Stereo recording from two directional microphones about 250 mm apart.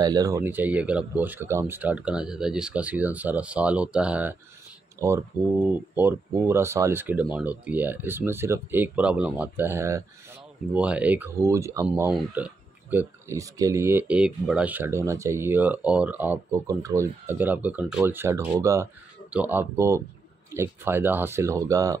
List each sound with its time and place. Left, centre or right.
0.0 s speech: centre